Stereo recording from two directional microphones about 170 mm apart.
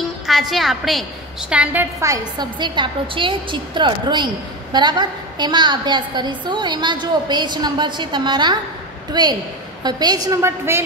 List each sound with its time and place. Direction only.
0.3 s a woman's voice: centre (ahead or behind)